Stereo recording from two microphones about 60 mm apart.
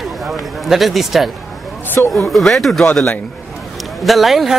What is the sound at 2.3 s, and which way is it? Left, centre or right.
Speech, centre.